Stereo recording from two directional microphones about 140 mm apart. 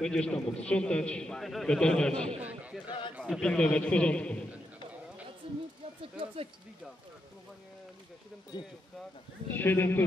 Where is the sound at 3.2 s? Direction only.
5° left (ahead or behind).